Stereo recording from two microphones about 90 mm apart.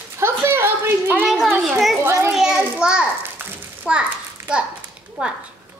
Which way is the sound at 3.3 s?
15° right (ahead or behind).